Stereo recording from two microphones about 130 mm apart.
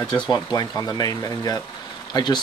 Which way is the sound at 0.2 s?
30° left (ahead or behind).